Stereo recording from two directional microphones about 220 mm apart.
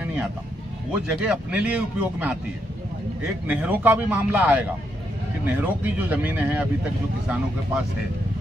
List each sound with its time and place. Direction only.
0.0 s vehicle: 5° right (ahead or behind)
1.2 s a man's voice: 5° right (ahead or behind)
3.4 s speech: 5° right (ahead or behind)